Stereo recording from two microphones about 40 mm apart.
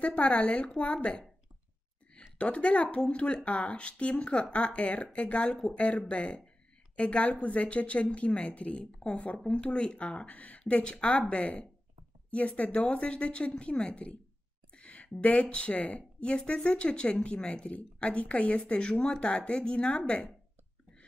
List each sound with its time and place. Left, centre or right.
0.0 s speech: left
2.3 s a woman's voice: left
14.7 s a sound: left
15.0 s a woman's voice: left
16.0 s a woman's voice: left